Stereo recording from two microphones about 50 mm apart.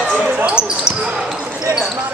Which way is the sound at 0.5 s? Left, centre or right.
Centre.